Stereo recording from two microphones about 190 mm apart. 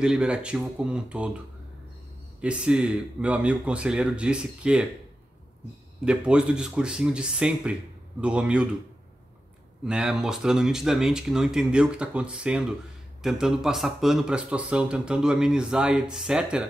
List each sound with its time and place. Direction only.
0.0 s speech: 5° right (ahead or behind)
2.4 s speech: 5° right (ahead or behind)
6.0 s speech: 5° right (ahead or behind)
9.8 s speech: 5° right (ahead or behind)